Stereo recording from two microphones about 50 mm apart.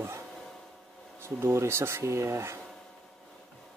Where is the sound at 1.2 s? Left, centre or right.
Right.